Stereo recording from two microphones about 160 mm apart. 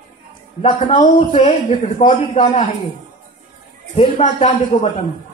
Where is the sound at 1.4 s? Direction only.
50° left (ahead or behind).